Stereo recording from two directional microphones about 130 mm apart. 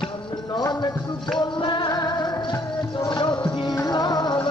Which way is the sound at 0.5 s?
30° left (ahead or behind).